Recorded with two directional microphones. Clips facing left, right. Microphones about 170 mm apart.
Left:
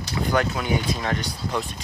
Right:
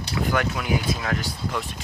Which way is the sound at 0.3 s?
Centre (ahead or behind).